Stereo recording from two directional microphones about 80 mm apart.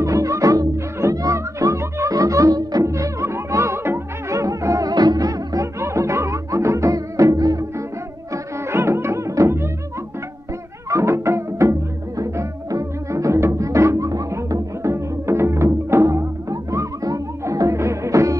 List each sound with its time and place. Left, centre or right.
0.0 s music: right
8.3 s music: right
10.9 s music: right